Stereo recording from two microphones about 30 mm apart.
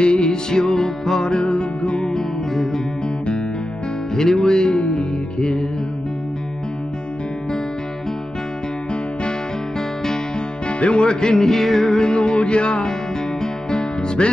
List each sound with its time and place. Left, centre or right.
0.0 s music: left
0.5 s music: centre; by 2.0 s left
2.0 s music: centre
4.1 s music: centre
10.8 s music: left